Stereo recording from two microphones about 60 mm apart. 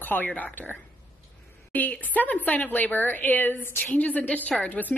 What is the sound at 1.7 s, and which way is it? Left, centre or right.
Speech, left.